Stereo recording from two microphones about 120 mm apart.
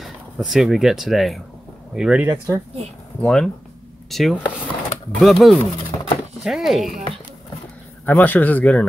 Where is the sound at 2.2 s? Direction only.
25° right (ahead or behind).